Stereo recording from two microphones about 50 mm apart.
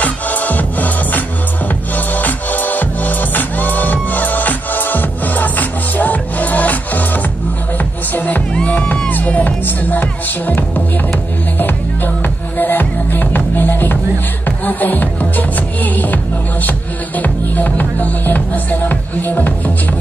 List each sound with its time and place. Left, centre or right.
0.0 s music: left
8.1 s music: left
17.2 s music: left